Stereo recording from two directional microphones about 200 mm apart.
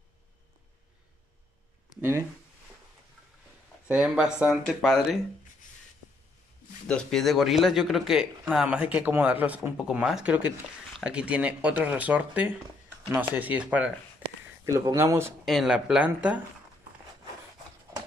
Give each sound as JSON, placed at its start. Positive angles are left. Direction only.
{"t": 2.0, "sound": "speech", "side_deg": -10}
{"t": 3.8, "sound": "speech", "side_deg": -5}
{"t": 6.9, "sound": "speech", "side_deg": 5}
{"t": 15.4, "sound": "speech", "side_deg": 0}